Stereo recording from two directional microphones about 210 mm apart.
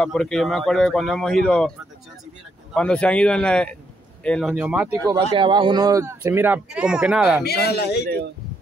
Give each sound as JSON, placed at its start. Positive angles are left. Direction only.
{"t": 0.0, "sound": "speech", "side_deg": 0}
{"t": 2.7, "sound": "speech", "side_deg": 5}
{"t": 5.3, "sound": "speech", "side_deg": -25}
{"t": 7.4, "sound": "a man's voice", "side_deg": 50}